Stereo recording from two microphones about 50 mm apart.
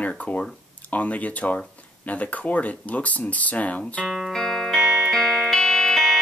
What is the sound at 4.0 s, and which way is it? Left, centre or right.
Music, centre.